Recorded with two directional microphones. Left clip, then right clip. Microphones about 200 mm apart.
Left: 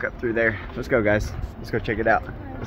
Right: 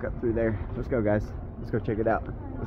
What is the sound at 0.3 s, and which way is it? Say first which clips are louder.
Speech: left 6 dB; 25° left (ahead or behind).